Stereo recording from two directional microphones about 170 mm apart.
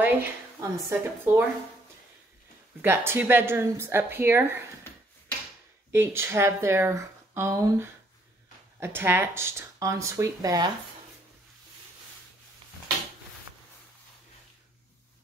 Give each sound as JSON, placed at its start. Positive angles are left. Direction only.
{"t": 0.0, "sound": "speech", "side_deg": -15}
{"t": 2.8, "sound": "speech", "side_deg": -15}
{"t": 5.9, "sound": "speech", "side_deg": -15}